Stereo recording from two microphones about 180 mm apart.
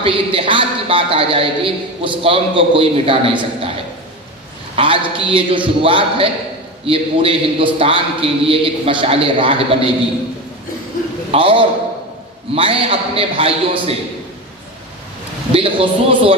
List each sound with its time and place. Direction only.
0.0 s a man's voice: 30° right (ahead or behind)
4.7 s a man's voice: 30° right (ahead or behind)
11.3 s a man's voice: 30° right (ahead or behind)
15.5 s a man's voice: 30° right (ahead or behind)